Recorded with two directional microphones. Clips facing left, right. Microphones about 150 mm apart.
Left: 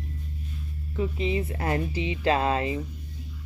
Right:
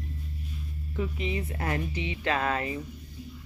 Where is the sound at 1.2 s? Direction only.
30° left (ahead or behind).